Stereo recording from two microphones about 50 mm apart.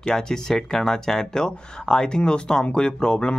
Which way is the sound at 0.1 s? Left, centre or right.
Centre.